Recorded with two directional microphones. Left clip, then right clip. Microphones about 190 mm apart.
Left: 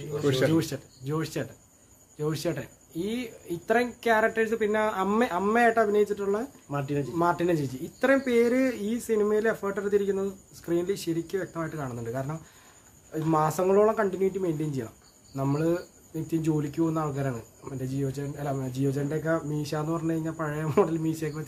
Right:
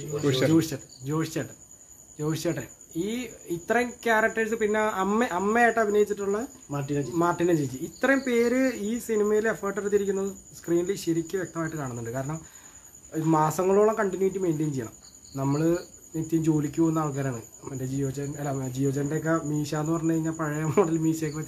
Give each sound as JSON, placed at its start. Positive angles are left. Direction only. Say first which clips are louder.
{"t": 0.2, "sound": "speech", "louder": "right 1 dB", "side_deg": 0}
{"t": 6.7, "sound": "speech", "louder": "even", "side_deg": 30}
{"t": 7.2, "sound": "speech", "louder": "right 1 dB", "side_deg": 5}